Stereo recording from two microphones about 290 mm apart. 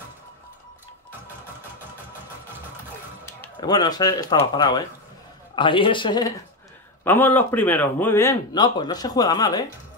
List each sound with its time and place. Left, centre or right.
3.3 s a man's voice: centre